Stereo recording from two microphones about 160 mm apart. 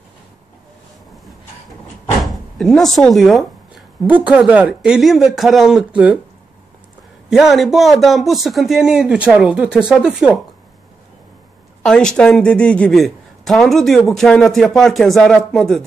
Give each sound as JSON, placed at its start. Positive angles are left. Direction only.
{"t": 2.6, "sound": "a woman's voice", "side_deg": 0}
{"t": 7.2, "sound": "speech", "side_deg": 0}
{"t": 11.8, "sound": "speech", "side_deg": 5}